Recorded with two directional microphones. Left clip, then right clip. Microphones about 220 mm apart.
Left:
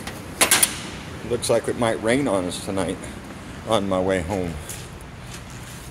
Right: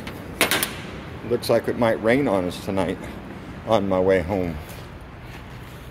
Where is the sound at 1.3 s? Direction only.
5° right (ahead or behind).